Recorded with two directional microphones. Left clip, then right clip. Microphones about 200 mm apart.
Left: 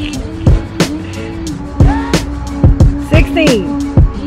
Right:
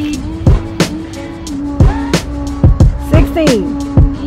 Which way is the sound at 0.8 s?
Centre (ahead or behind).